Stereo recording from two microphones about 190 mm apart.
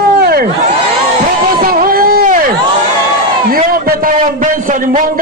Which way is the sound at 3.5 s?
50° right (ahead or behind).